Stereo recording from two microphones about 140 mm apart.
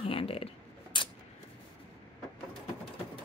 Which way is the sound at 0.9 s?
35° left (ahead or behind).